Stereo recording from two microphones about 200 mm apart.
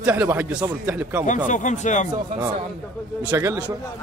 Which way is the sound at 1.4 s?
40° left (ahead or behind).